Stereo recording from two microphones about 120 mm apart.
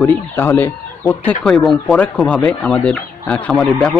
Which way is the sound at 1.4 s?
5° left (ahead or behind).